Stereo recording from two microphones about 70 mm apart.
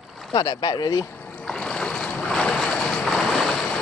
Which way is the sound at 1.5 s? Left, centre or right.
Centre.